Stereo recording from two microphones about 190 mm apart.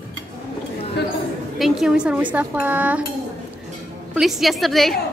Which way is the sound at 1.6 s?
Centre (ahead or behind).